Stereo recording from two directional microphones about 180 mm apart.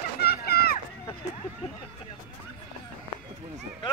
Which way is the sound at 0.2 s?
60° left (ahead or behind).